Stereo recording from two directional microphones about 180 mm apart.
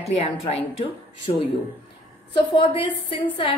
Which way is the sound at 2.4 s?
30° left (ahead or behind).